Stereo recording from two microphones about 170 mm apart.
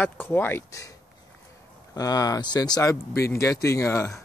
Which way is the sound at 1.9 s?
20° left (ahead or behind).